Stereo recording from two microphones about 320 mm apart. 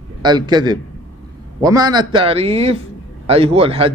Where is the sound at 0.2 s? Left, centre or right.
Centre.